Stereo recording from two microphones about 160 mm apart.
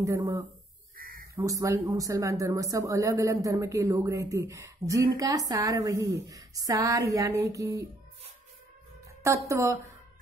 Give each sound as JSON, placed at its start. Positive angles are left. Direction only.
{"t": 0.0, "sound": "a woman's voice", "side_deg": -25}
{"t": 0.9, "sound": "a sound", "side_deg": -60}
{"t": 1.3, "sound": "a woman's voice", "side_deg": -20}
{"t": 9.2, "sound": "a woman's voice", "side_deg": -20}